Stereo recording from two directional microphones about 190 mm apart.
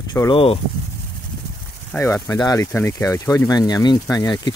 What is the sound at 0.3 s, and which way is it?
Speech, 30° left (ahead or behind).